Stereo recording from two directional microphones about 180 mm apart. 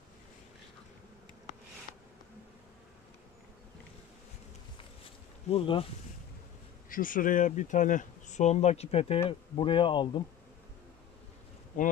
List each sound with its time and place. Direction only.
5.5 s speech: 30° left (ahead or behind)
6.9 s speech: 50° left (ahead or behind); by 10.2 s 25° left (ahead or behind)
11.7 s speech: 45° left (ahead or behind)